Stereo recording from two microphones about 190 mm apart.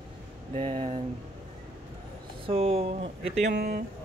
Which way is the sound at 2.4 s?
30° right (ahead or behind).